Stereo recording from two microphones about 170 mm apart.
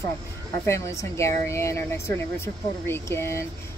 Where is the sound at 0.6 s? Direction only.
15° left (ahead or behind).